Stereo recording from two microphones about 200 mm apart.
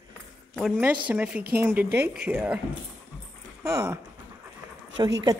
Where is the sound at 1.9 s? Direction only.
55° right (ahead or behind).